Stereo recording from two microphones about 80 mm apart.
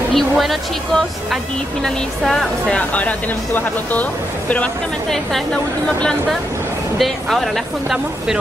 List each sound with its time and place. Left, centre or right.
0.1 s speech: centre
2.9 s speech: centre
5.1 s a woman's voice: centre